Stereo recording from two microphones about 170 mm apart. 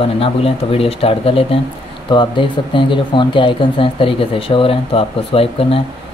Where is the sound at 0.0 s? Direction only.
35° left (ahead or behind).